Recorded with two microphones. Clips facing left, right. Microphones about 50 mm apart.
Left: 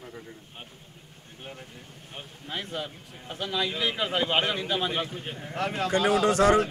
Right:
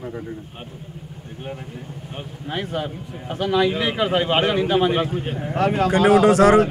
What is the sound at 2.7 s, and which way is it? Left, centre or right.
A man's voice, right.